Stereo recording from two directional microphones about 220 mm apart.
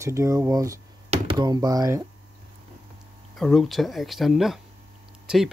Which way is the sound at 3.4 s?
Centre (ahead or behind).